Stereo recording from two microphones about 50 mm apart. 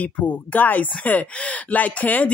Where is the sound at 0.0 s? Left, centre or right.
Left.